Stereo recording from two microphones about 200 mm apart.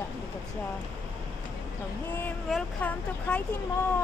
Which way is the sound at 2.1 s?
10° left (ahead or behind).